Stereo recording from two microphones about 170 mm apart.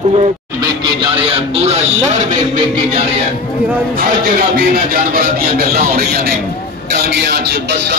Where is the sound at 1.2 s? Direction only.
40° right (ahead or behind).